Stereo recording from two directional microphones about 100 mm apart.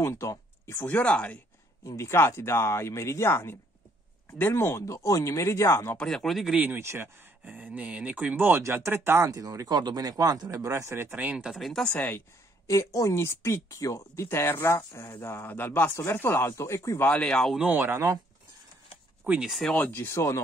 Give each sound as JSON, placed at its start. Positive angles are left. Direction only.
{"t": 0.0, "sound": "speech", "side_deg": 30}
{"t": 0.8, "sound": "speech", "side_deg": 15}
{"t": 1.9, "sound": "speech", "side_deg": 25}
{"t": 5.9, "sound": "speech", "side_deg": 5}
{"t": 6.6, "sound": "speech", "side_deg": -25}
{"t": 9.3, "sound": "speech", "side_deg": -35}
{"t": 11.1, "sound": "speech", "side_deg": -15}
{"t": 11.9, "sound": "speech", "side_deg": 20}
{"t": 12.6, "sound": "speech", "side_deg": 30}
{"t": 17.1, "sound": "speech", "side_deg": 10}
{"t": 17.6, "sound": "speech", "side_deg": -15}
{"t": 19.2, "sound": "speech", "side_deg": -15}
{"t": 19.7, "sound": "speech", "side_deg": 20}